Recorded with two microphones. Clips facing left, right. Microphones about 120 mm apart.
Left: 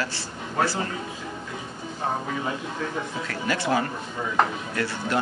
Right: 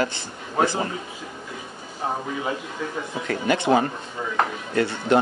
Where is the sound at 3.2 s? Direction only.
20° right (ahead or behind).